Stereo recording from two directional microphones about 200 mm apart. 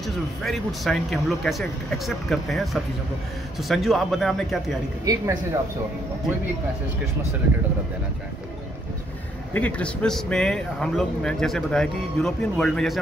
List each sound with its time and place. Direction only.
0.0 s speech: centre (ahead or behind)
5.0 s speech: 20° right (ahead or behind)
9.5 s speech: 5° left (ahead or behind)